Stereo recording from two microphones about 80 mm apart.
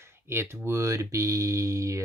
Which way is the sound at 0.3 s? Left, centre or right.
Right.